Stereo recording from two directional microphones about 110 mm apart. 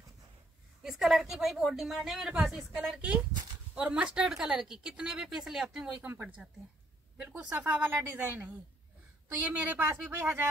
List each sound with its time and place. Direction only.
0.8 s a woman's voice: centre (ahead or behind)
9.5 s speech: 15° right (ahead or behind)